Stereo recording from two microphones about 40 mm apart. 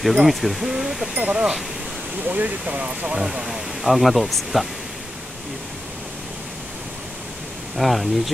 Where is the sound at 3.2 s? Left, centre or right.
Centre.